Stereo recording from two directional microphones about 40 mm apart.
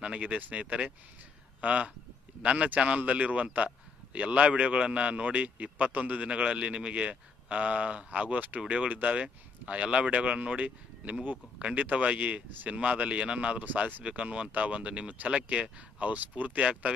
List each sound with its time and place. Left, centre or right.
0.0 s speech: right
9.0 s speech: right
16.1 s speech: right